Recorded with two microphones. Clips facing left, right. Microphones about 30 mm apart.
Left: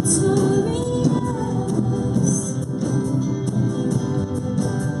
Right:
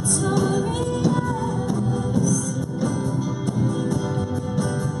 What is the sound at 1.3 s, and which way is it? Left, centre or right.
Music, right.